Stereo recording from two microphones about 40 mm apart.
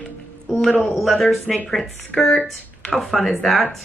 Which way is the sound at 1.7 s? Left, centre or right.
Centre.